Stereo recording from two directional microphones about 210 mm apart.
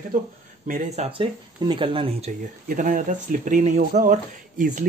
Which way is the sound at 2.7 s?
40° right (ahead or behind).